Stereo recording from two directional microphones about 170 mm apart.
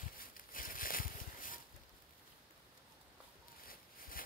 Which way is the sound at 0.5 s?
55° left (ahead or behind).